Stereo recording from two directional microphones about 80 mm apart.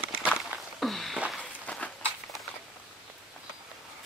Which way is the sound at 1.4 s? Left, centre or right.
Centre.